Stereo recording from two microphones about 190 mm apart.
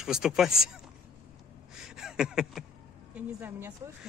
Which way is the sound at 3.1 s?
10° right (ahead or behind).